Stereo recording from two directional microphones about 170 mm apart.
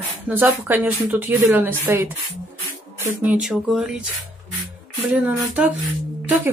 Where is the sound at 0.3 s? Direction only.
10° right (ahead or behind).